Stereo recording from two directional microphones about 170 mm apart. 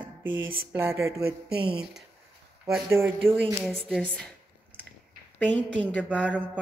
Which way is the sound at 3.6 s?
Centre (ahead or behind).